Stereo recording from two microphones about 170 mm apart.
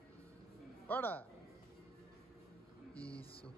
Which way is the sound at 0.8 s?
10° left (ahead or behind).